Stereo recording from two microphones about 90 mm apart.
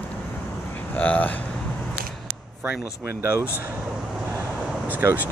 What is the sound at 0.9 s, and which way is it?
Speech, 15° left (ahead or behind).